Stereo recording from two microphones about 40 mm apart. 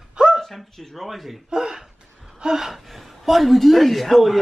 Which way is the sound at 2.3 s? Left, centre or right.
Centre.